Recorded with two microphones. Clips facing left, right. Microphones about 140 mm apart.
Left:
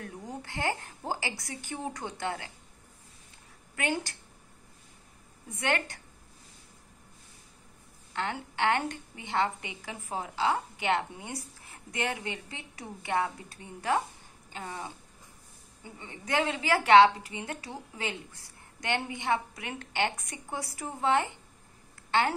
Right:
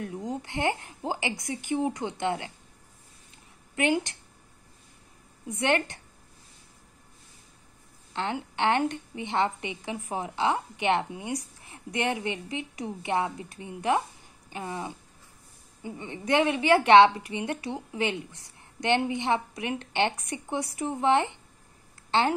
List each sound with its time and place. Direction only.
0.2 s a woman's voice: 15° right (ahead or behind)
3.7 s a woman's voice: 20° right (ahead or behind)
5.5 s a woman's voice: 20° right (ahead or behind)
8.1 s a woman's voice: 20° right (ahead or behind)